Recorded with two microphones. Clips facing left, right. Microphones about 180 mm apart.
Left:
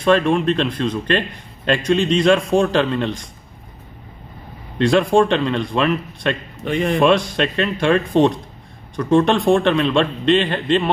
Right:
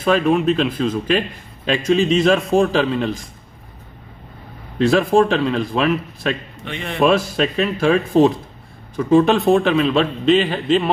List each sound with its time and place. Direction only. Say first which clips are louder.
0.0 s speech: even; 5° right (ahead or behind)
4.7 s speech: even; 5° right (ahead or behind)
6.6 s a man's voice: left 9 dB; 45° left (ahead or behind)
7.0 s speech: right 2 dB; 5° right (ahead or behind)